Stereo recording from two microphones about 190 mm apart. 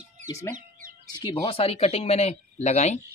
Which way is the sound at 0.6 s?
45° right (ahead or behind).